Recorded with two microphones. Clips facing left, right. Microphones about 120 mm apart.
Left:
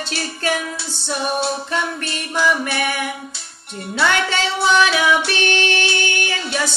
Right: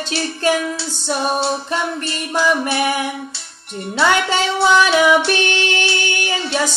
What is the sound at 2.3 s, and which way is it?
Music, 25° right (ahead or behind).